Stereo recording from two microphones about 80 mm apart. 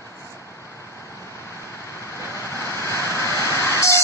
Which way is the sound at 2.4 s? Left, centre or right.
Left.